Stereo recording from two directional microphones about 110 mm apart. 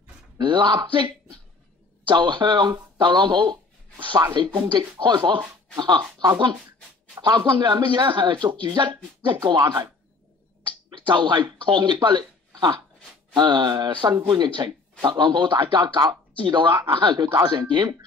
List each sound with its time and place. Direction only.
0.4 s a man's voice: 45° right (ahead or behind)
10.9 s a man's voice: 45° right (ahead or behind)